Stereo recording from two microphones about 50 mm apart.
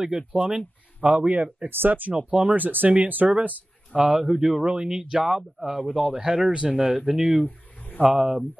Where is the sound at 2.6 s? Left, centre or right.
Right.